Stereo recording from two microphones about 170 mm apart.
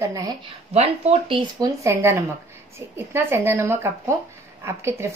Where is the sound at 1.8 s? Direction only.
15° right (ahead or behind).